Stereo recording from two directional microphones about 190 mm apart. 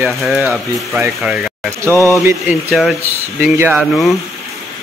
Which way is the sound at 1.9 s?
15° left (ahead or behind).